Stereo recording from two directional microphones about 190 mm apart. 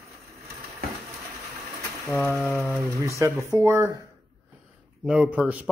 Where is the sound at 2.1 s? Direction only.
5° left (ahead or behind).